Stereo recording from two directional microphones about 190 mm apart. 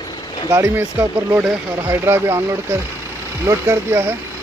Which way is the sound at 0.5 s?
10° right (ahead or behind).